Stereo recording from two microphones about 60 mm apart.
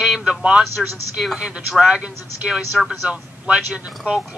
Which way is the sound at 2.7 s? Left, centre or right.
Centre.